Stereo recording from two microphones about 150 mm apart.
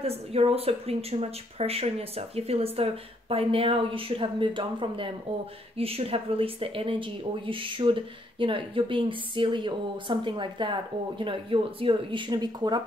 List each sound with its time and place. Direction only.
0.0 s speech: 40° right (ahead or behind)